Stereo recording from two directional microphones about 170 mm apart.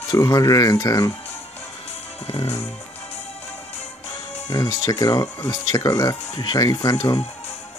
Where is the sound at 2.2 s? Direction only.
35° left (ahead or behind).